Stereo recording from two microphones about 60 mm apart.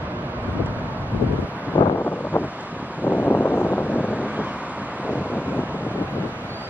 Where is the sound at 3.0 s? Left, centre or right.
Left.